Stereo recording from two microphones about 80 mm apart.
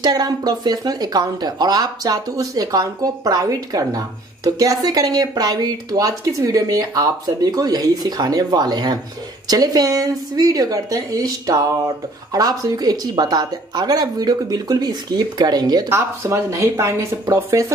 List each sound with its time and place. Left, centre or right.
0.0 s a woman's voice: right
15.9 s speech: right